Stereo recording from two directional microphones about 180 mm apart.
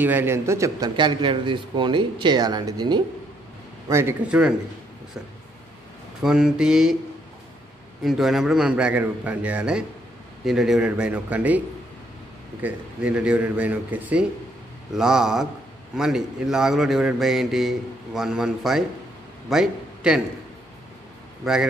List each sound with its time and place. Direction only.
0.0 s a man's voice: 10° right (ahead or behind)
3.9 s a man's voice: 10° right (ahead or behind)
6.2 s a man's voice: 5° right (ahead or behind)
8.0 s a man's voice: centre (ahead or behind)
12.6 s a man's voice: 5° right (ahead or behind)